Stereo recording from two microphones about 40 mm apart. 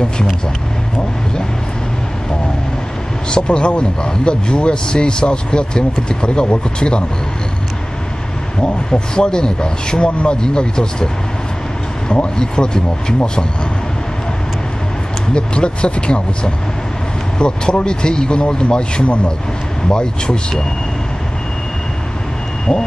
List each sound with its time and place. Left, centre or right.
3.3 s speech: left
8.5 s speech: left
12.1 s speech: left
15.3 s speech: left